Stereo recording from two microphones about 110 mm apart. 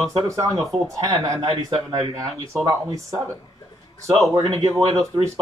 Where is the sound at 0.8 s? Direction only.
30° right (ahead or behind).